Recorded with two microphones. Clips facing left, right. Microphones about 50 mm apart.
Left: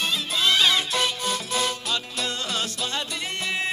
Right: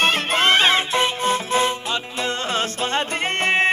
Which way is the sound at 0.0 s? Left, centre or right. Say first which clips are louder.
Right 7 dB; right.